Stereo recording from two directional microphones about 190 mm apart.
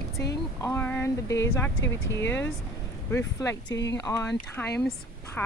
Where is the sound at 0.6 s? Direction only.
15° left (ahead or behind).